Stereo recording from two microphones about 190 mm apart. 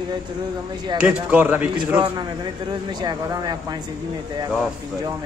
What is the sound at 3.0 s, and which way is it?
Speech, 20° right (ahead or behind).